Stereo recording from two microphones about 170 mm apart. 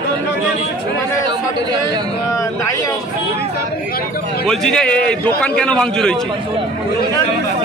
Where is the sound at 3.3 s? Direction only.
65° left (ahead or behind).